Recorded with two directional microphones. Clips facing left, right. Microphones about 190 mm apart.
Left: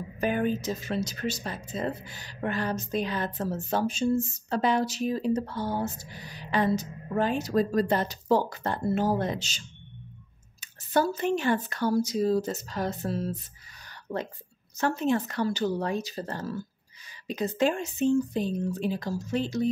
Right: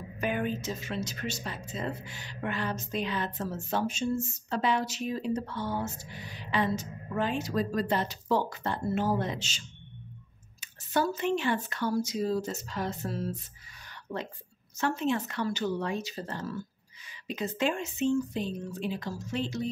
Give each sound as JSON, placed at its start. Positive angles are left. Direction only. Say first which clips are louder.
{"t": 0.2, "sound": "speech", "louder": "left 4 dB", "side_deg": 40}
{"t": 10.6, "sound": "speech", "louder": "left 3 dB", "side_deg": 40}